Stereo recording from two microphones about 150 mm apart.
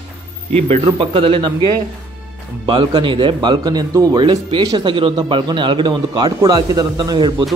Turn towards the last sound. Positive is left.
turn(degrees=-25)  # may be behind; listen again after turning